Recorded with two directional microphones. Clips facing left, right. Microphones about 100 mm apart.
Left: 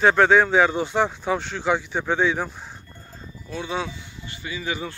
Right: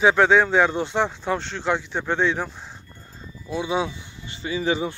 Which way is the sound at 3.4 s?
15° right (ahead or behind).